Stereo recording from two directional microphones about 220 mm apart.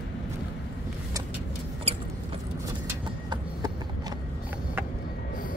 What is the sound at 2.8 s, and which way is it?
Vehicle, 15° right (ahead or behind).